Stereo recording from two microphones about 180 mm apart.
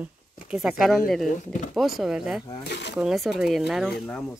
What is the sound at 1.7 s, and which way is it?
Speech, centre (ahead or behind).